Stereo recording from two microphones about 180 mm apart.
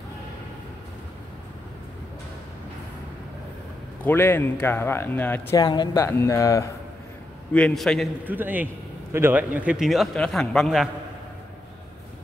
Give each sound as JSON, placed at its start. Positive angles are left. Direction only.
{"t": 4.0, "sound": "speech", "side_deg": 10}
{"t": 5.6, "sound": "speech", "side_deg": 25}
{"t": 7.5, "sound": "a man's voice", "side_deg": 5}
{"t": 8.3, "sound": "a man's voice", "side_deg": -10}